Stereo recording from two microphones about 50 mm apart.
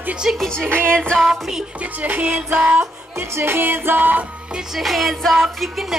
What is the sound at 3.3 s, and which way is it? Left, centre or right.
Music, right.